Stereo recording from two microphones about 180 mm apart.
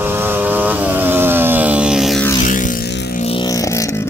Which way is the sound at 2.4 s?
45° left (ahead or behind).